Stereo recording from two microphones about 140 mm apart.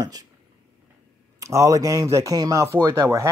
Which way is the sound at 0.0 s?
25° right (ahead or behind).